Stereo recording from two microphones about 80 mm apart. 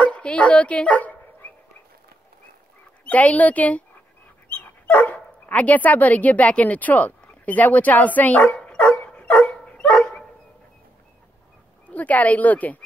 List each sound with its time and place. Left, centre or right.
0.0 s dog: centre
3.1 s speech: centre
8.5 s dog: centre
11.9 s speech: centre